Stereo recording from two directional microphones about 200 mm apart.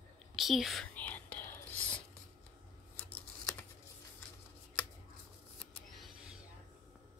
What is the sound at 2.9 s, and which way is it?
Scissors, 10° left (ahead or behind).